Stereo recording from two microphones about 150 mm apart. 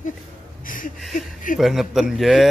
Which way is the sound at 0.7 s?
65° left (ahead or behind).